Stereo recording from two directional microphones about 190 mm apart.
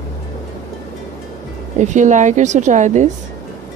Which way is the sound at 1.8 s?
40° right (ahead or behind).